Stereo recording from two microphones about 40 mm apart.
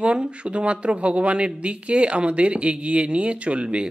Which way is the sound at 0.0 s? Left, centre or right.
Right.